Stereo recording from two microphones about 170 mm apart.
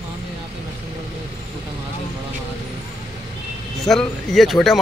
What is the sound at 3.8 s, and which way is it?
Speech, centre (ahead or behind).